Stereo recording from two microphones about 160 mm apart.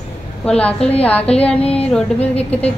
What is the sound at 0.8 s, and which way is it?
Speech, 40° left (ahead or behind).